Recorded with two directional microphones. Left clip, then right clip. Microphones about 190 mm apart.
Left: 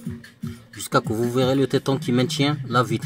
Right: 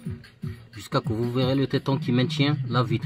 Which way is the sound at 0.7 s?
5° left (ahead or behind).